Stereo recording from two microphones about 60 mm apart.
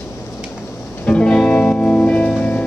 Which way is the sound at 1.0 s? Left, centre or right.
Centre.